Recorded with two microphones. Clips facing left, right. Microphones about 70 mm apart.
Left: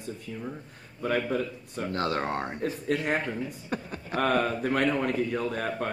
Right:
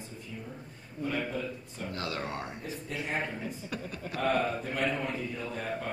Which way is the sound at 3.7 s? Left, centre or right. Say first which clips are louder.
Left 4 dB; left.